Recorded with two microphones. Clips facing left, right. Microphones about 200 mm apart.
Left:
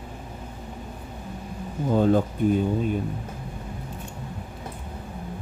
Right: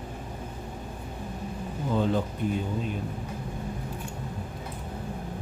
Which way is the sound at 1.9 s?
45° left (ahead or behind).